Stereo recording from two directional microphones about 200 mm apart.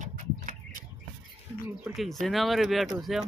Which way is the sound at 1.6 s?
Centre (ahead or behind).